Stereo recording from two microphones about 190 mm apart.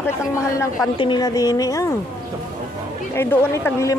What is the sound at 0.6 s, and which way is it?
Speech, 20° left (ahead or behind).